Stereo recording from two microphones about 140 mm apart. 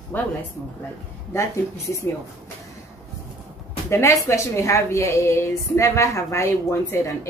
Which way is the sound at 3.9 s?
20° left (ahead or behind).